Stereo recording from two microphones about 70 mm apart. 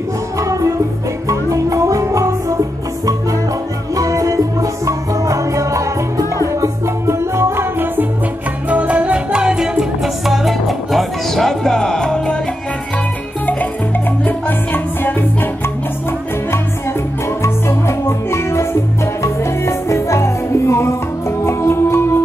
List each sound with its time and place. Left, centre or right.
0.4 s music: right
3.9 s music: right
8.6 s music: centre
14.2 s music: left
17.4 s music: left